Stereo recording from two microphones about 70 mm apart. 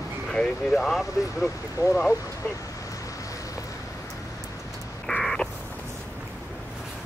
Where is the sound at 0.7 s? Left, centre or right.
Centre.